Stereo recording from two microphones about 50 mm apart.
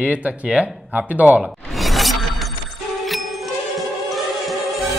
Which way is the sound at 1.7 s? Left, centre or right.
Centre.